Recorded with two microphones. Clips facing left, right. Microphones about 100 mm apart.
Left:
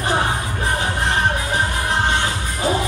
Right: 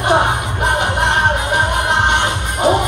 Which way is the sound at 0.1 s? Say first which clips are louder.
Right 7 dB; 20° right (ahead or behind).